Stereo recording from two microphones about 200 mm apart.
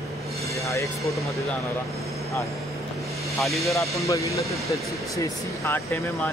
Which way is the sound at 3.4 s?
Centre (ahead or behind).